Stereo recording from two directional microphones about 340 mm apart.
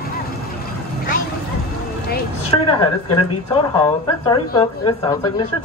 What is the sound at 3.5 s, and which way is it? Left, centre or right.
Speech, centre.